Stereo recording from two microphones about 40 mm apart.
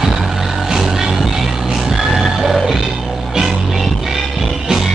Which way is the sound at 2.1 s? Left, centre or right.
Centre.